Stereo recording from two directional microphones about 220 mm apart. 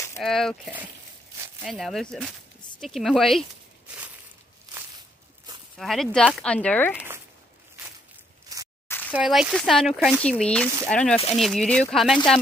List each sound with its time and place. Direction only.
0.2 s speech: centre (ahead or behind)
5.8 s speech: centre (ahead or behind)
8.5 s zipper: 15° right (ahead or behind)
9.1 s speech: 5° right (ahead or behind)